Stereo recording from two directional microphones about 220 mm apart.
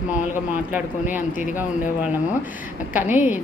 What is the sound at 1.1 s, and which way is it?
Speech, 35° left (ahead or behind).